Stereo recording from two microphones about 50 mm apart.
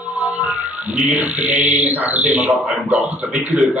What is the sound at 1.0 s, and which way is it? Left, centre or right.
A man's voice, right.